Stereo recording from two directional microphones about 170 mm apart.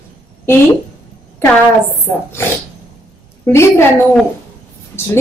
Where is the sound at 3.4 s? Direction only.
15° left (ahead or behind).